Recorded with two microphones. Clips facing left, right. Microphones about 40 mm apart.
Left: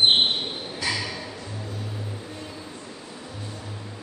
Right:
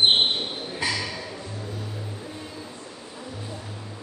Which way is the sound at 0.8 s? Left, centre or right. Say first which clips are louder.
Right 1 dB; right.